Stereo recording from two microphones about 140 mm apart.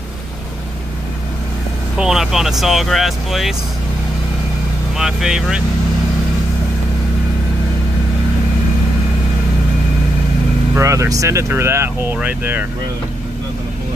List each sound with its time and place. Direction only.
2.0 s speech: 5° right (ahead or behind)
4.9 s speech: 5° right (ahead or behind)
10.7 s speech: 20° right (ahead or behind)